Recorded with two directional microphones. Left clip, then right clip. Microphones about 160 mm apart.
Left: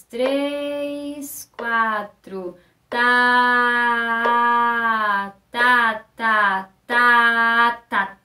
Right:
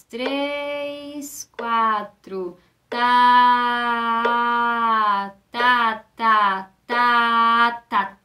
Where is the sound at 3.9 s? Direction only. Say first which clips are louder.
Left 1 dB; 15° right (ahead or behind).